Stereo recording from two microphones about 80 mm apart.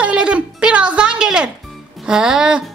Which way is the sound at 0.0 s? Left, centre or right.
Centre.